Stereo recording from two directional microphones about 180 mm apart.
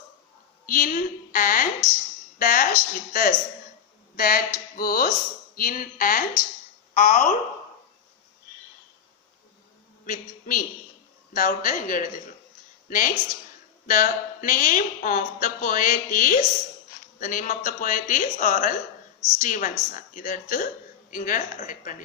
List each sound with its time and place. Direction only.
0.7 s a woman's voice: 50° left (ahead or behind)
10.0 s a woman's voice: 50° left (ahead or behind)